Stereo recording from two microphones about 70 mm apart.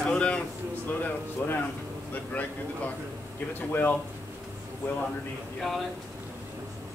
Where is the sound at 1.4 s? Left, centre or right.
Left.